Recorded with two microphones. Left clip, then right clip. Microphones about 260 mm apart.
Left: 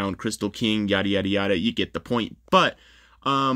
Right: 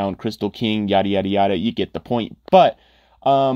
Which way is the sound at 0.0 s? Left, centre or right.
Centre.